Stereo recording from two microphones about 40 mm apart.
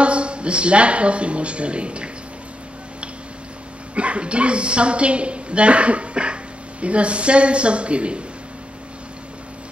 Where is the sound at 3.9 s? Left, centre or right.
Right.